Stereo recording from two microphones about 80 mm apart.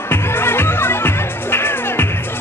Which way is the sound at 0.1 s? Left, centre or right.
Left.